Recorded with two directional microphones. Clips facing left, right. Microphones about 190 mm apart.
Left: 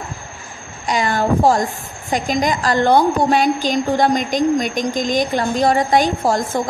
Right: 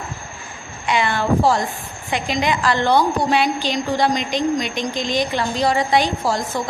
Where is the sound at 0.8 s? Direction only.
40° left (ahead or behind).